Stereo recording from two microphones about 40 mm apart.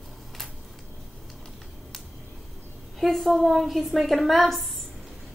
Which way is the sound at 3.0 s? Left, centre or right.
Centre.